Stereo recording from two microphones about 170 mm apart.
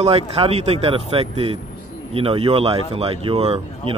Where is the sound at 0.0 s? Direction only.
35° right (ahead or behind).